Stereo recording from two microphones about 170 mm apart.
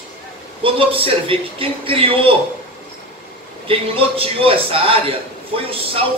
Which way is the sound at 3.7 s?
35° right (ahead or behind).